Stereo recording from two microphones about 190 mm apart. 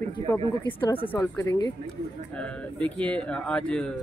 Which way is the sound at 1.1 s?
10° left (ahead or behind).